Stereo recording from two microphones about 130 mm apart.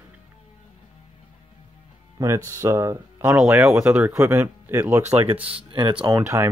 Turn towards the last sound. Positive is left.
turn(degrees=-20)  # may be behind; listen again after turning